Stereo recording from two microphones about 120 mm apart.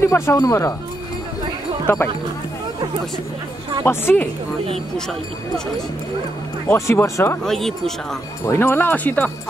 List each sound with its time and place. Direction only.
0.0 s speech: 25° left (ahead or behind)
1.9 s speech: 20° left (ahead or behind)
3.8 s speech: 20° left (ahead or behind)
6.7 s speech: 20° left (ahead or behind)
7.4 s speech: 5° left (ahead or behind)
8.5 s speech: 20° left (ahead or behind)